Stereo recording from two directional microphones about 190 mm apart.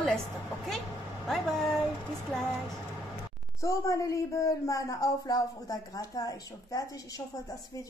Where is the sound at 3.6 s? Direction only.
15° left (ahead or behind).